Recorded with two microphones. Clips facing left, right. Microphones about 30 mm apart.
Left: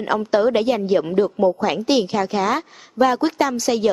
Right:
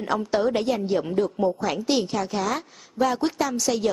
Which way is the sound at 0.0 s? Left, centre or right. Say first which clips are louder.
Left 5 dB; left.